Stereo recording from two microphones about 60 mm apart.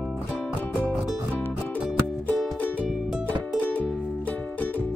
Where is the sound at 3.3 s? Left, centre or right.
Left.